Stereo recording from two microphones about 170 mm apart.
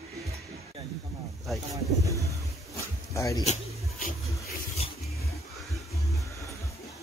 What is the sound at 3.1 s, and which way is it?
Speech, 20° left (ahead or behind).